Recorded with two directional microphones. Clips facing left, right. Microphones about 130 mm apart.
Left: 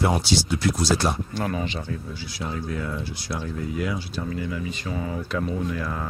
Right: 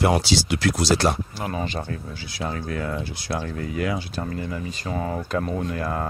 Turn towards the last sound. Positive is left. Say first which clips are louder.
# right 2 dB
turn(degrees=-50)  # may be behind; listen again after turning